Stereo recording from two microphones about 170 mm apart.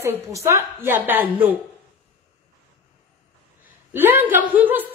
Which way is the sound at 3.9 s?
10° right (ahead or behind).